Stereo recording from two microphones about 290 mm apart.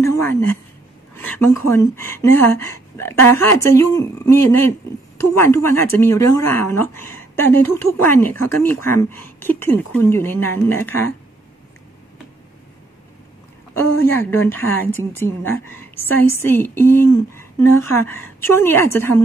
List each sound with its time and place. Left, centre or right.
0.0 s a woman's voice: centre
13.7 s speech: centre